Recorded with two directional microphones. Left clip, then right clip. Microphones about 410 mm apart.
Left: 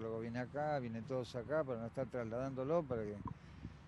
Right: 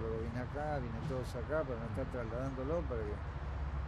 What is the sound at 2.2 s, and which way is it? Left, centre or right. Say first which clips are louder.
Speech: even; right.